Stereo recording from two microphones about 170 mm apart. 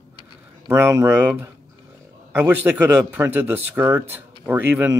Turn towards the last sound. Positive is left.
turn(degrees=-10)  # may be behind; listen again after turning